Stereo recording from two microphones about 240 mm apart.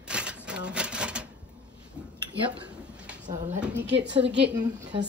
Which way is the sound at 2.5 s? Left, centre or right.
Centre.